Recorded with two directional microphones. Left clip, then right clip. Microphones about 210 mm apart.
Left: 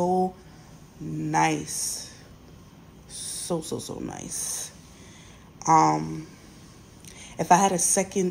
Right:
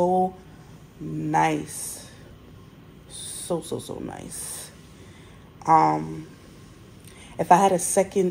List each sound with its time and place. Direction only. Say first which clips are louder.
0.0 s a sound: right 3 dB; 15° left (ahead or behind)
1.2 s a woman's voice: right 2 dB; 10° left (ahead or behind)
1.6 s speech: left 3 dB; 20° right (ahead or behind)
3.2 s speech: right 1 dB; 20° left (ahead or behind)
5.7 s speech: right 1 dB; 20° left (ahead or behind)
7.3 s a woman's voice: right 2 dB; 10° left (ahead or behind)